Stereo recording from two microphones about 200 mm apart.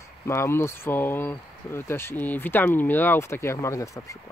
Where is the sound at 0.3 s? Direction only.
15° left (ahead or behind).